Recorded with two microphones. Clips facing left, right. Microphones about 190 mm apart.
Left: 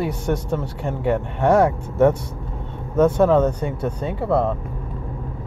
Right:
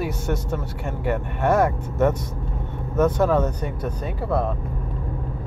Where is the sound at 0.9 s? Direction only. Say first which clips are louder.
Left 4 dB; 15° left (ahead or behind).